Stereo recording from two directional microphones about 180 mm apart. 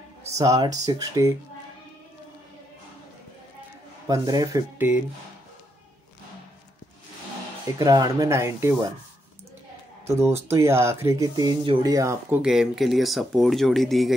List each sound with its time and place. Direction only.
0.3 s speech: 20° right (ahead or behind)
4.1 s speech: 20° right (ahead or behind)
7.8 s speech: 20° right (ahead or behind)
10.0 s speech: 15° right (ahead or behind)